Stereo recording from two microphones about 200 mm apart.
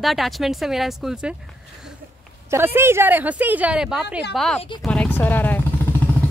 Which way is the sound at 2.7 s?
10° right (ahead or behind).